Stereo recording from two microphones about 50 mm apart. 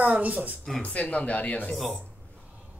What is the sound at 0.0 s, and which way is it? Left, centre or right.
Speech, right.